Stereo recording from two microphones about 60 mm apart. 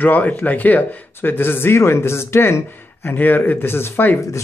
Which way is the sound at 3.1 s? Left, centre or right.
Left.